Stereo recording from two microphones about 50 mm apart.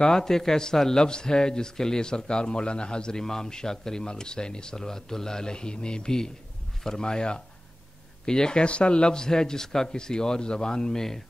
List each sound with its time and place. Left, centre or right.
0.0 s a man's voice: centre